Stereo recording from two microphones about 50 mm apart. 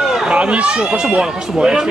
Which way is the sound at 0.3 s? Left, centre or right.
Right.